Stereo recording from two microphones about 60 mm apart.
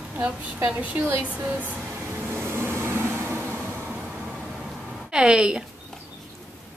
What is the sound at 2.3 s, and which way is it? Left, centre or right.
Vehicle, right.